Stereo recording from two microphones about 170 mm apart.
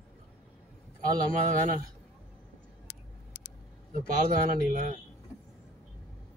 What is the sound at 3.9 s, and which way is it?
A man's voice, 55° right (ahead or behind).